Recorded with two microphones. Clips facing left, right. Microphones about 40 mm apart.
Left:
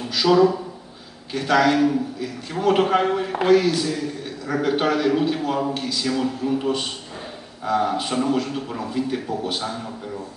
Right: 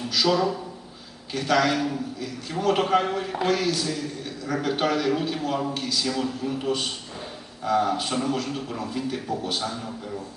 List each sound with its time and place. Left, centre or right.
0.1 s a man's voice: centre